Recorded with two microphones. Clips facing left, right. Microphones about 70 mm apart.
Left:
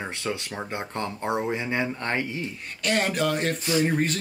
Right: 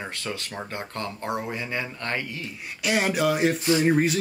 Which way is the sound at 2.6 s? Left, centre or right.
Centre.